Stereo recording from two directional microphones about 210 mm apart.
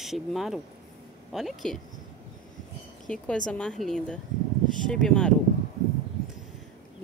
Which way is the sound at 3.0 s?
5° left (ahead or behind).